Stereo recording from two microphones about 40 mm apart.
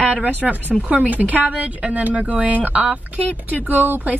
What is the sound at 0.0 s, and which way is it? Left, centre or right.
Speech, right.